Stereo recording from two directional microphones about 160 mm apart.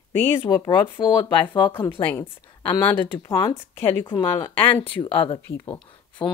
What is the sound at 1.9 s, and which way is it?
Speech, 15° left (ahead or behind).